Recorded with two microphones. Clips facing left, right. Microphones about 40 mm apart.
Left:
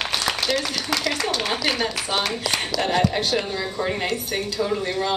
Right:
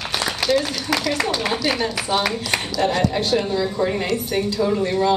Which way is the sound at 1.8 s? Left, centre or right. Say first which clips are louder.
Right 3 dB; centre.